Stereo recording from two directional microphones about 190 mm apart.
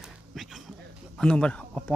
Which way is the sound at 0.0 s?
Centre (ahead or behind).